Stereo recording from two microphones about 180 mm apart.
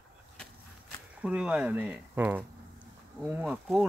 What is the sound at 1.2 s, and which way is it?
Speech, 5° right (ahead or behind).